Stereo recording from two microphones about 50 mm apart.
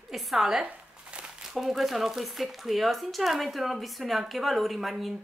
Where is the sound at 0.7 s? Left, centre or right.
Right.